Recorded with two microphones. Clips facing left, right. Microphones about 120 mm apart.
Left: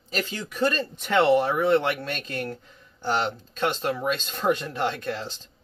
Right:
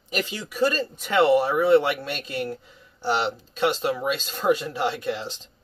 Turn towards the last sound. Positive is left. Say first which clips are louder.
# right 2 dB
turn(degrees=-15)  # may be behind; listen again after turning